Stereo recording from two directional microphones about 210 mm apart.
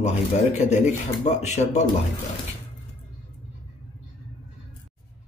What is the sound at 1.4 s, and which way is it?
Speech, 35° left (ahead or behind).